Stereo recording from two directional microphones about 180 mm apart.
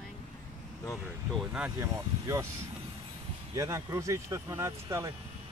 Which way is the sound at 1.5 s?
10° right (ahead or behind).